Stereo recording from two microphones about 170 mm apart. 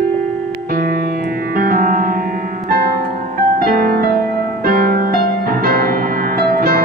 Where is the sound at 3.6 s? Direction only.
60° right (ahead or behind).